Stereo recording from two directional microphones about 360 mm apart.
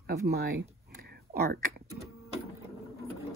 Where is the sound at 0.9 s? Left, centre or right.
Right.